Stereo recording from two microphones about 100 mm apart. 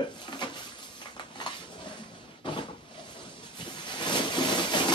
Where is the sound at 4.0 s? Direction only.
50° left (ahead or behind).